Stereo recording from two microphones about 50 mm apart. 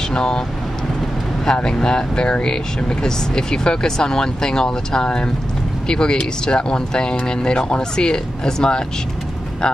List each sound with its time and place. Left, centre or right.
0.1 s speech: centre
1.4 s speech: centre